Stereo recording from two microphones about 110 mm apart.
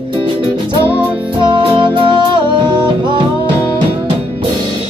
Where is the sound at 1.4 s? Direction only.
45° right (ahead or behind).